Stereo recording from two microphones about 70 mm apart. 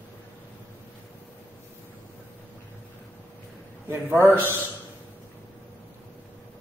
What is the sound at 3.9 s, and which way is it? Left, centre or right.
Speech, right.